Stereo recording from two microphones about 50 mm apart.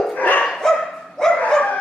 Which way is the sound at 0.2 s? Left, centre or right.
Left.